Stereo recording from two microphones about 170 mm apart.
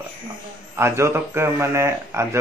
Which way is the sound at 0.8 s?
15° right (ahead or behind).